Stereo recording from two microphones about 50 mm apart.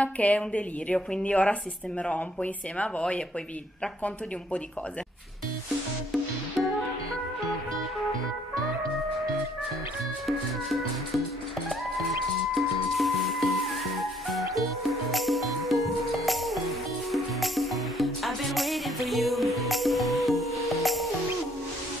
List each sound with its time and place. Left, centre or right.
0.0 s a woman's voice: left
10.2 s music: centre
12.5 s music: centre